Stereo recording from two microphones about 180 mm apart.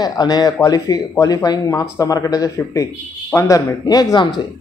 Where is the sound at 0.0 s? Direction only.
20° left (ahead or behind).